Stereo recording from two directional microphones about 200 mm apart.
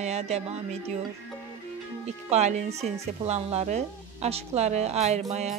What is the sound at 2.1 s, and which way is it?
A woman's voice, 35° right (ahead or behind).